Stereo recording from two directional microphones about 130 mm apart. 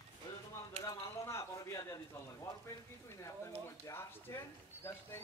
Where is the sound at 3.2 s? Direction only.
20° left (ahead or behind).